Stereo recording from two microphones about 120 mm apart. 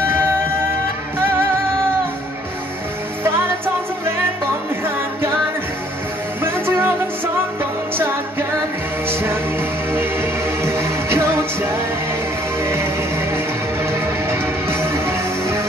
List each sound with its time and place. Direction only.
6.4 s music: 20° right (ahead or behind)
10.6 s music: 20° right (ahead or behind)
13.8 s music: 20° right (ahead or behind)